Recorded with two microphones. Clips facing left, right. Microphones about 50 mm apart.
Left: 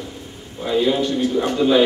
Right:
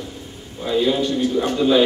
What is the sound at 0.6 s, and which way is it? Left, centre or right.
A man's voice, centre.